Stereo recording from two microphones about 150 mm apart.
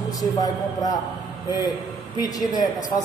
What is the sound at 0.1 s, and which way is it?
Speech, 25° left (ahead or behind).